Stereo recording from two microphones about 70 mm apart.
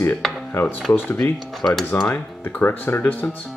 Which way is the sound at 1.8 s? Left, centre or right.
Left.